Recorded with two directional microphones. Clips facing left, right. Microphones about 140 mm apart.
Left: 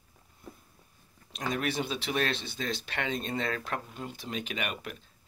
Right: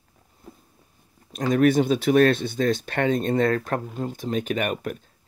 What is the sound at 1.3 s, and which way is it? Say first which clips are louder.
Speech: right 13 dB; 45° right (ahead or behind).